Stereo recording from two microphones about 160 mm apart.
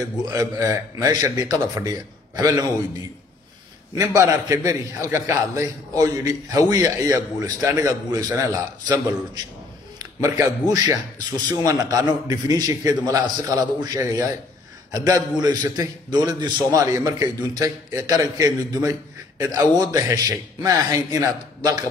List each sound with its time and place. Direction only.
0.2 s a man's voice: 20° right (ahead or behind)
4.0 s a man's voice: 20° right (ahead or behind)